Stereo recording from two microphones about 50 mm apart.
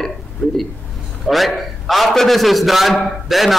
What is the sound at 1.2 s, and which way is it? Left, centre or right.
A man's voice, centre.